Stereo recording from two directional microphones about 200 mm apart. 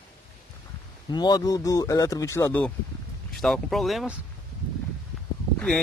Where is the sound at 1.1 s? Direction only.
20° left (ahead or behind); by 4.1 s centre (ahead or behind).